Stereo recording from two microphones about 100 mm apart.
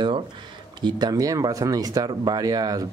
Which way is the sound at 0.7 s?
45° right (ahead or behind).